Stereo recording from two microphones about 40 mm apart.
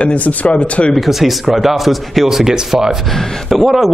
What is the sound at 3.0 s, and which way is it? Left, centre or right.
Speech, centre.